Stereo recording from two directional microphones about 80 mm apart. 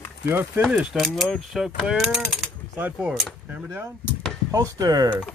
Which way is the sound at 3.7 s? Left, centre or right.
Right.